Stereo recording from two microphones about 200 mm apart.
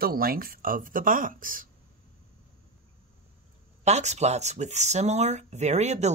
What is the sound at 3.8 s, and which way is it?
Speech, 35° right (ahead or behind).